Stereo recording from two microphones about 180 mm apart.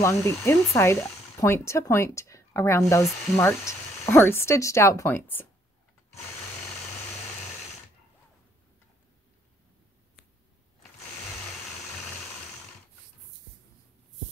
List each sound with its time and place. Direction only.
0.0 s speech: 15° left (ahead or behind)